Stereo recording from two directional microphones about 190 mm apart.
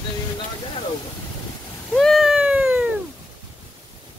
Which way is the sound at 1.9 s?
Centre (ahead or behind).